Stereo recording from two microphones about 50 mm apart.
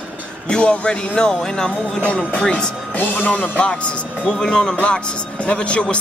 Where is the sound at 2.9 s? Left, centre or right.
Left.